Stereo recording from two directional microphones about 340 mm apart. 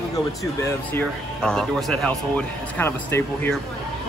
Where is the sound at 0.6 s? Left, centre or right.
Centre.